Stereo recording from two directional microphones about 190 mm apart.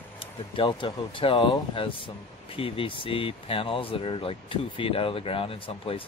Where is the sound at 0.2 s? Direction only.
25° left (ahead or behind).